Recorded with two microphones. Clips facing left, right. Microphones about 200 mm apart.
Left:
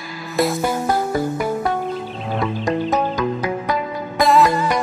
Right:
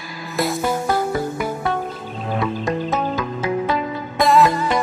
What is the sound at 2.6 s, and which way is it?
Music, 15° left (ahead or behind).